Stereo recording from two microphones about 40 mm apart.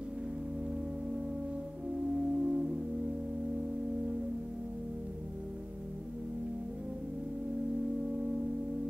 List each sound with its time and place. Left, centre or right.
2.1 s organ: right